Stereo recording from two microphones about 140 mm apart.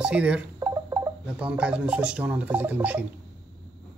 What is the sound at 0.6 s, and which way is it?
Music, 25° right (ahead or behind).